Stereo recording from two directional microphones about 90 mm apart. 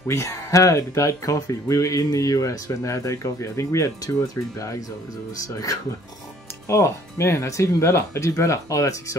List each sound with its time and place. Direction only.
0.0 s speech: 35° left (ahead or behind)